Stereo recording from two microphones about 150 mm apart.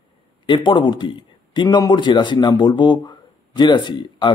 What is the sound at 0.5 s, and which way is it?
Speech, 30° left (ahead or behind).